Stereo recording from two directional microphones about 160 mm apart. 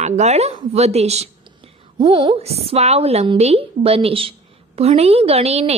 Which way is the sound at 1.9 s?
30° right (ahead or behind).